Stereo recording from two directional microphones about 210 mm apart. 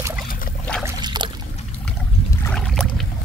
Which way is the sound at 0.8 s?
20° right (ahead or behind).